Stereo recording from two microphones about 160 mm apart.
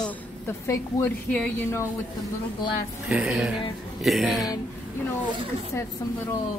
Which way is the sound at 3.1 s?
5° right (ahead or behind).